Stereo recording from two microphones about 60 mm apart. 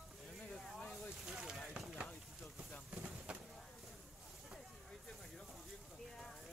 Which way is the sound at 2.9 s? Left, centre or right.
Right.